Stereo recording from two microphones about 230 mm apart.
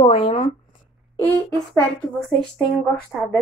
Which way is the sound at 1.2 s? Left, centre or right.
Centre.